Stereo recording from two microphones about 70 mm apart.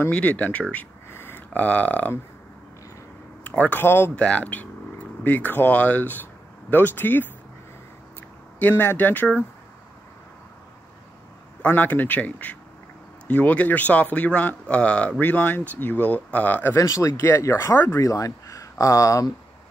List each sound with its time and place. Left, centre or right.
0.1 s speech: centre
1.1 s a sound: left
1.5 s speech: left
3.4 s speech: left
4.1 s speech: centre
8.5 s speech: left
11.6 s speech: left
16.7 s speech: left
18.0 s speech: left